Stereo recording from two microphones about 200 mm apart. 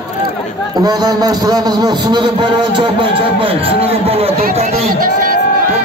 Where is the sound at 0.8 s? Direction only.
20° right (ahead or behind).